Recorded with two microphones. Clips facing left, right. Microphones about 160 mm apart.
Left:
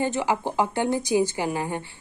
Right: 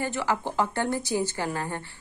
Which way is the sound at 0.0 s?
20° left (ahead or behind).